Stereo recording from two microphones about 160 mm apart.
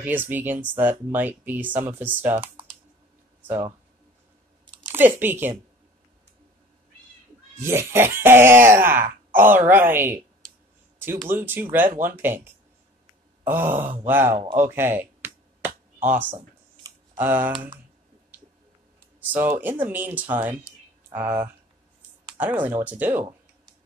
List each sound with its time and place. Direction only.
0.0 s speech: 10° right (ahead or behind)
4.9 s speech: 10° right (ahead or behind)
7.6 s speech: 15° right (ahead or behind)
13.4 s groan: 15° right (ahead or behind)
14.0 s speech: 15° right (ahead or behind)
14.5 s a sound: 15° right (ahead or behind)
17.2 s speech: 10° right (ahead or behind)
19.1 s speech: 10° right (ahead or behind)